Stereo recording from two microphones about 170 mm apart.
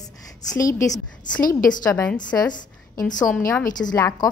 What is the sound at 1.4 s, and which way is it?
Speech, 55° left (ahead or behind).